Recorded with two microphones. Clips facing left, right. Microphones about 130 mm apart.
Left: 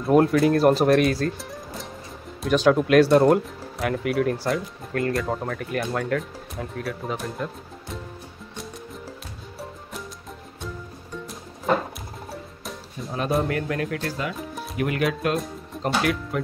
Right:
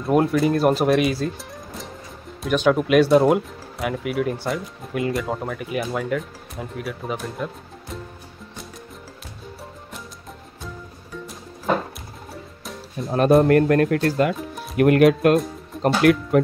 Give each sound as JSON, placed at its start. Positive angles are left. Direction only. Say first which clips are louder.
{"t": 0.0, "sound": "speech", "louder": "left 1 dB", "side_deg": 0}
{"t": 13.4, "sound": "speech", "louder": "right 10 dB", "side_deg": -55}